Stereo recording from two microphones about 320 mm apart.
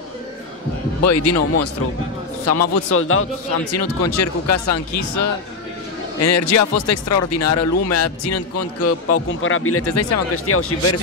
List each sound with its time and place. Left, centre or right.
1.0 s speech: left
3.7 s speech: left